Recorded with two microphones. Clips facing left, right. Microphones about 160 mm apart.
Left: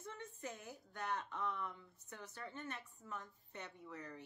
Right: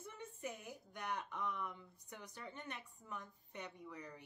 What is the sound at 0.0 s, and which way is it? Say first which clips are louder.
A woman's voice: right 1 dB; 10° right (ahead or behind).